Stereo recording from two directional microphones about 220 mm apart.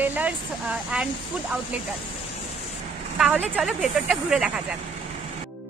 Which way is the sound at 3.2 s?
Centre (ahead or behind).